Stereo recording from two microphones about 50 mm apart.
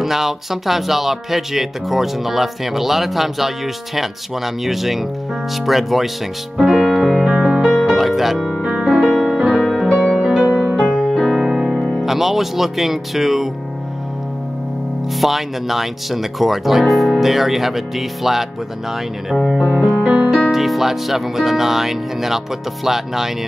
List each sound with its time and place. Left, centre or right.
0.0 s speech: centre
6.6 s music: centre
7.2 s music: right
7.6 s music: centre
9.1 s music: centre
9.5 s music: centre
9.8 s music: centre
10.1 s music: centre
10.8 s music: centre
12.0 s speech: centre
15.1 s speech: centre
20.0 s music: right
20.2 s music: centre
20.5 s speech: centre